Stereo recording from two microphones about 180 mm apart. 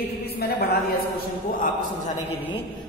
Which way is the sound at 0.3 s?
60° left (ahead or behind).